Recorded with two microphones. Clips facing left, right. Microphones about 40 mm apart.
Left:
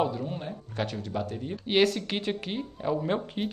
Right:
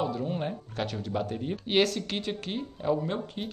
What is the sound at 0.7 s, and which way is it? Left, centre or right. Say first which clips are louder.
Speech: left 1 dB; centre.